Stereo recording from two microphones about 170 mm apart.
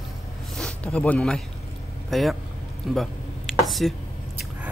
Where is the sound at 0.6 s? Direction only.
5° left (ahead or behind).